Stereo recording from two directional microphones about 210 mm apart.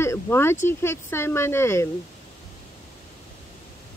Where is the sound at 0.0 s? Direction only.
10° left (ahead or behind).